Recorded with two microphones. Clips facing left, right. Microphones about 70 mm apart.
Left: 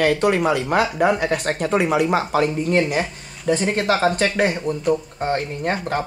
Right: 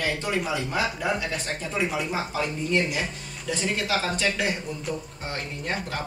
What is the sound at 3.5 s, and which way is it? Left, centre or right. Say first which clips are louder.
Speech: left 8 dB; left.